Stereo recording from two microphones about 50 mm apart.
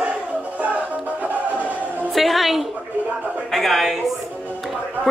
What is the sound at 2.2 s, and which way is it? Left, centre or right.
A woman's voice, centre.